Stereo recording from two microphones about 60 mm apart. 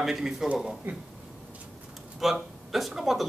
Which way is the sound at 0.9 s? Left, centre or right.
Right.